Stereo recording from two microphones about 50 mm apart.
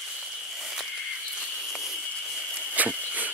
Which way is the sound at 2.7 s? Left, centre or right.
Right.